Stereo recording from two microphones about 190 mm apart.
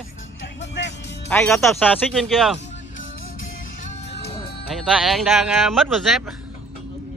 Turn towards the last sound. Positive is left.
turn(degrees=0)  # may be behind; listen again after turning